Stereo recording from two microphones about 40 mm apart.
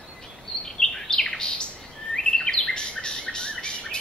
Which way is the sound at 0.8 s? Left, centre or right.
Centre.